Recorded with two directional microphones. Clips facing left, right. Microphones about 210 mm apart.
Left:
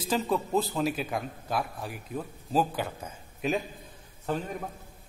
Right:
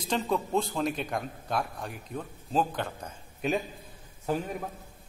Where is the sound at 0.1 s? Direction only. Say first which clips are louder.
Left 1 dB; 5° left (ahead or behind).